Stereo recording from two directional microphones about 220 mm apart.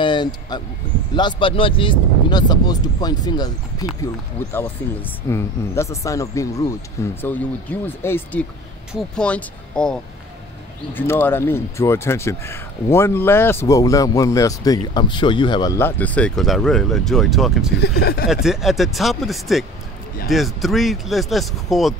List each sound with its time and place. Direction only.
0.0 s vehicle: 20° left (ahead or behind)
1.1 s speech: 20° left (ahead or behind); by 17.7 s centre (ahead or behind)
17.7 s speech: 45° left (ahead or behind)
18.3 s speech: centre (ahead or behind)